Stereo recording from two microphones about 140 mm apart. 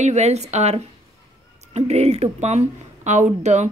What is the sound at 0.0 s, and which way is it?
Speech, 55° right (ahead or behind).